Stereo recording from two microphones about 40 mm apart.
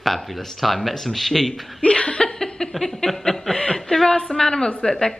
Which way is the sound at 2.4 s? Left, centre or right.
Centre.